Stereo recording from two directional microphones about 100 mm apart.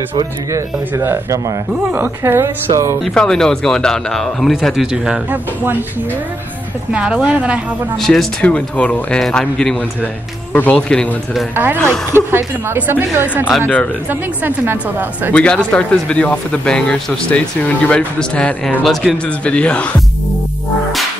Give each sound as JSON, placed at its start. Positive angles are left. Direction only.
{"t": 0.5, "sound": "a woman's voice", "side_deg": -30}
{"t": 3.0, "sound": "speech", "side_deg": 5}
{"t": 6.9, "sound": "a woman's voice", "side_deg": -10}
{"t": 8.0, "sound": "speech", "side_deg": 5}
{"t": 10.5, "sound": "speech", "side_deg": 15}
{"t": 10.9, "sound": "speech", "side_deg": 5}
{"t": 11.5, "sound": "a woman's voice", "side_deg": -20}
{"t": 15.3, "sound": "speech", "side_deg": 10}